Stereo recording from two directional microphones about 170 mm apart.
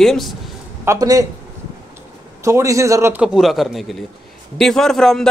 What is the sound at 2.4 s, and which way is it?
Speech, 15° right (ahead or behind).